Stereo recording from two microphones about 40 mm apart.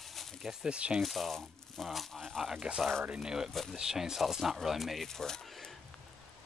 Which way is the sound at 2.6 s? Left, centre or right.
Right.